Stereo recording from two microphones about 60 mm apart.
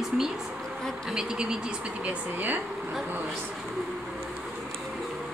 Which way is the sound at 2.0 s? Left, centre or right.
Right.